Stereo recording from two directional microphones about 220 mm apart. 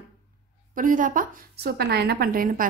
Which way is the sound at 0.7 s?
35° right (ahead or behind).